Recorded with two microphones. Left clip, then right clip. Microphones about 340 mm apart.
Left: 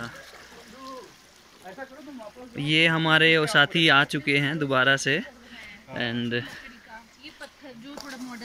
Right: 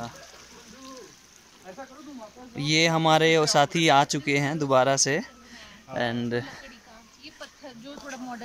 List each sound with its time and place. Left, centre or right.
2.5 s speech: centre
7.8 s speech: centre